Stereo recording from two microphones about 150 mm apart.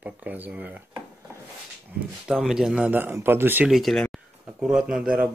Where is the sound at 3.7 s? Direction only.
Centre (ahead or behind).